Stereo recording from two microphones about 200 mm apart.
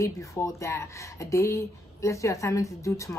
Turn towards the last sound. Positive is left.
turn(degrees=15)  # may be behind; listen again after turning